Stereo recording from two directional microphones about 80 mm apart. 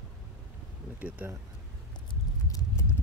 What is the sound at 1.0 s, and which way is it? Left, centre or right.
Speech, centre.